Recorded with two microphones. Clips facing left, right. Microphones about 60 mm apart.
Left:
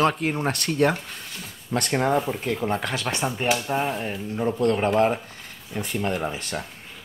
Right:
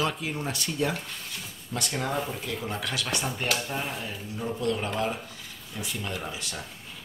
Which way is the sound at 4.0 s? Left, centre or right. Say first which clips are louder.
Left 8 dB; left.